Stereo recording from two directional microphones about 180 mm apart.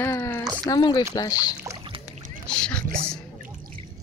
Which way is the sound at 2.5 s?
5° left (ahead or behind).